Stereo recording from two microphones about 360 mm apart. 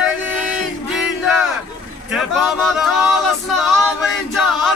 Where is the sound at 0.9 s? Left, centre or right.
Centre.